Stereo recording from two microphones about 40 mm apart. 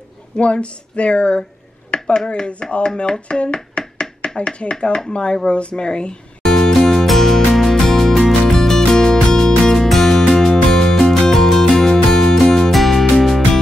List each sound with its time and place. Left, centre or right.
0.4 s speech: left
3.0 s a sound: left
4.4 s speech: left
6.4 s music: centre
7.7 s music: centre
8.0 s music: centre
9.8 s music: centre